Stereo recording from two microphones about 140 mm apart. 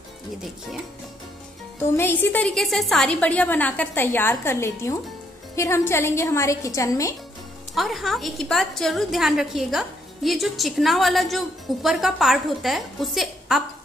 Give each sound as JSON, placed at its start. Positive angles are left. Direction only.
{"t": 1.8, "sound": "a woman's voice", "side_deg": 15}
{"t": 7.7, "sound": "a woman's voice", "side_deg": 0}